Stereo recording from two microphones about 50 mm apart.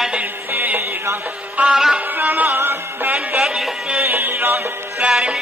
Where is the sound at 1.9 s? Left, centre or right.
Right.